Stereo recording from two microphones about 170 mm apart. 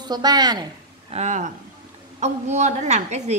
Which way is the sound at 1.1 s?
45° right (ahead or behind).